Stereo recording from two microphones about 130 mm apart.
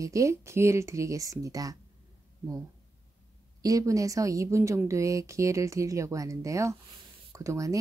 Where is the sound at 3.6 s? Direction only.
25° right (ahead or behind).